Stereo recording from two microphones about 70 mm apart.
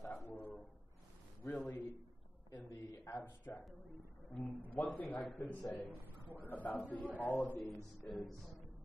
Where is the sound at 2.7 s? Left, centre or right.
Left.